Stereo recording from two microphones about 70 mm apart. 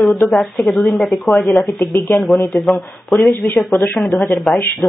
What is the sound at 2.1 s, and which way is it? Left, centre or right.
Speech, left.